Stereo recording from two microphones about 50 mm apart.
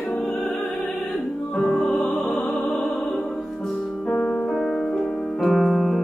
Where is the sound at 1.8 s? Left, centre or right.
Centre.